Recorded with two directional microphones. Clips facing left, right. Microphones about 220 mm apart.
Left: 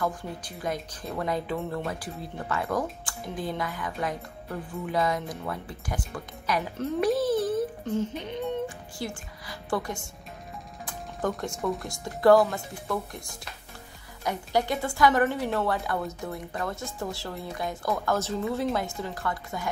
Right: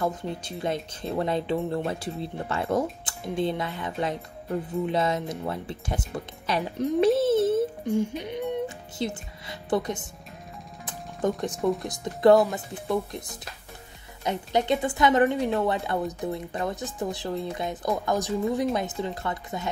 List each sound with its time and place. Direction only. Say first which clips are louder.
0.0 s a woman's voice: right 2 dB; 25° right (ahead or behind)
6.8 s a sound: right 5 dB; 25° right (ahead or behind)
7.8 s speech: right 3 dB; 15° right (ahead or behind)
10.9 s music: right 3 dB; 20° right (ahead or behind)
11.8 s a woman's voice: right 1 dB; 20° right (ahead or behind)